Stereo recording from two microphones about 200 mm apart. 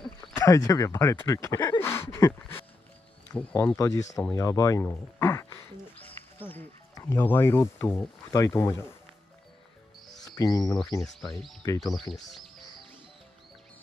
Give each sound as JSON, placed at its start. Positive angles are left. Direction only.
{"t": 0.4, "sound": "speech", "side_deg": 15}
{"t": 6.0, "sound": "music", "side_deg": 10}
{"t": 8.3, "sound": "speech", "side_deg": 15}
{"t": 10.2, "sound": "a sound", "side_deg": 20}
{"t": 11.0, "sound": "speech", "side_deg": 0}